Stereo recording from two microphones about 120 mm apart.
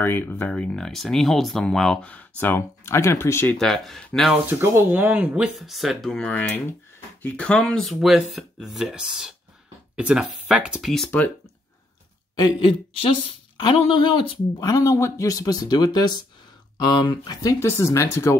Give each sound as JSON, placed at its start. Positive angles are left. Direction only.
{"t": 0.0, "sound": "speech", "side_deg": 15}
{"t": 3.5, "sound": "speech", "side_deg": 5}
{"t": 4.5, "sound": "speech", "side_deg": -15}
{"t": 11.1, "sound": "speech", "side_deg": 15}
{"t": 12.4, "sound": "a woman's voice", "side_deg": 40}
{"t": 14.6, "sound": "speech", "side_deg": 25}